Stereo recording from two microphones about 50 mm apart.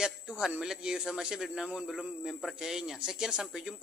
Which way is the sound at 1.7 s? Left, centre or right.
Centre.